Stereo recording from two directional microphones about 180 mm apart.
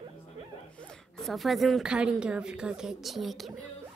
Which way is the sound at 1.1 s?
Centre (ahead or behind).